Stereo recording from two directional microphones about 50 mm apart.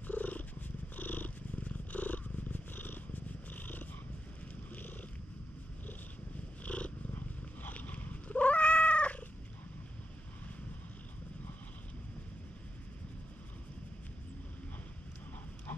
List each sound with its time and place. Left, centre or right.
0.0 s purr: left
6.6 s cat: left
7.2 s cat: left